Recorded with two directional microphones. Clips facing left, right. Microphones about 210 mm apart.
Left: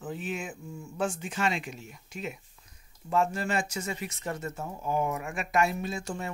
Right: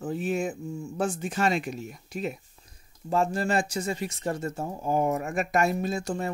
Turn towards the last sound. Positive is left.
turn(degrees=-40)  # may be behind; listen again after turning